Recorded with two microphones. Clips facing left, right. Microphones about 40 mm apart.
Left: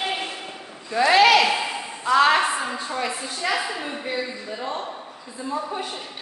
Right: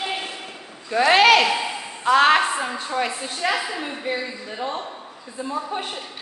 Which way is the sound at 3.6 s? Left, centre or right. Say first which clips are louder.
Even; centre.